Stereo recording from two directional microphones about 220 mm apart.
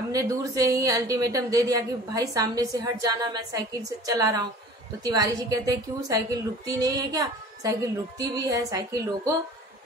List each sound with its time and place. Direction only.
0.1 s a woman's voice: 15° right (ahead or behind)